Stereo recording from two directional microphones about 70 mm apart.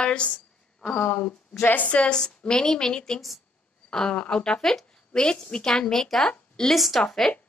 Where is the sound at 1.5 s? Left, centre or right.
Left.